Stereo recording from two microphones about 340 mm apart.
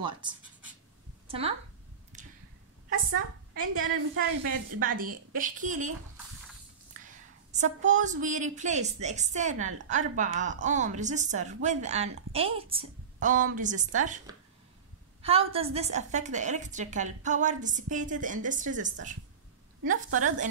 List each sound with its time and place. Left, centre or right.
1.2 s a sound: centre
2.9 s a woman's voice: right
4.7 s a woman's voice: right
7.1 s a woman's voice: right
15.2 s a woman's voice: centre